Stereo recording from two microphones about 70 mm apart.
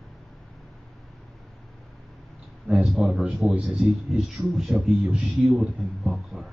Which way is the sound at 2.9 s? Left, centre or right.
Centre.